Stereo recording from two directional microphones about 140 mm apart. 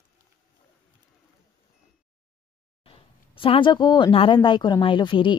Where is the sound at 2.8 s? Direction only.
40° left (ahead or behind).